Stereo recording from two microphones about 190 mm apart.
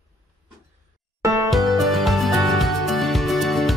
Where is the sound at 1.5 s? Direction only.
Centre (ahead or behind).